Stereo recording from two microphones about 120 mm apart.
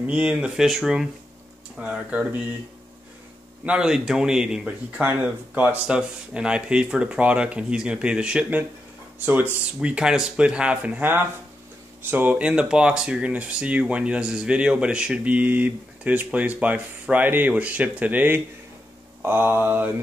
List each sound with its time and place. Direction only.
0.0 s speech: 10° right (ahead or behind)
3.6 s speech: 5° right (ahead or behind)